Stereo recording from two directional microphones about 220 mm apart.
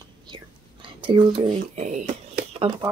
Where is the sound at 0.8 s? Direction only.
20° right (ahead or behind).